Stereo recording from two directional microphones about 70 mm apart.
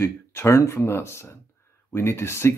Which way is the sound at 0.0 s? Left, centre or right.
Left.